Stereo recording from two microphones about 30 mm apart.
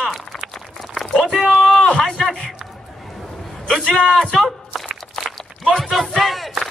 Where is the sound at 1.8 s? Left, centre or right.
Left.